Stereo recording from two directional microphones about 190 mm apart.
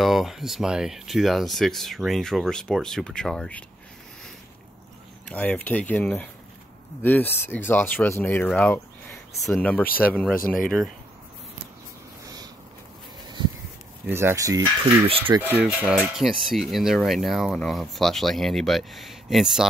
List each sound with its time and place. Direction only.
0.0 s speech: centre (ahead or behind)
5.3 s speech: 10° left (ahead or behind)
10.3 s speech: 50° left (ahead or behind)
14.0 s speech: 10° right (ahead or behind)